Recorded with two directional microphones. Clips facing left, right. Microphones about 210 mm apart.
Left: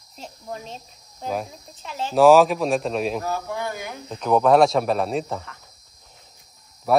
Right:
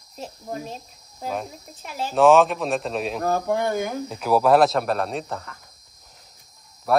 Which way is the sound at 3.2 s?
50° right (ahead or behind).